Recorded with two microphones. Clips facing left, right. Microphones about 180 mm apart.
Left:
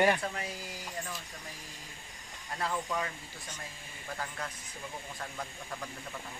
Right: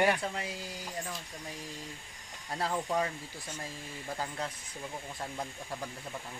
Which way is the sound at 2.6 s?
35° right (ahead or behind).